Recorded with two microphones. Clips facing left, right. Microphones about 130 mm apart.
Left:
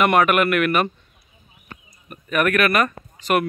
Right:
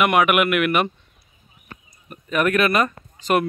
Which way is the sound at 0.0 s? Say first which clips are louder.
Left 1 dB; 10° right (ahead or behind).